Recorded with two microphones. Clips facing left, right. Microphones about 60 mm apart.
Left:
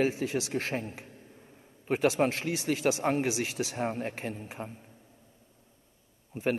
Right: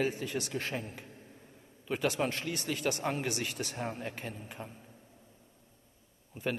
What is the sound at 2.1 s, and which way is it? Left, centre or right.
A man's voice, left.